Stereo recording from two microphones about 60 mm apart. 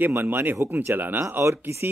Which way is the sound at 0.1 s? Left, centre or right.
Right.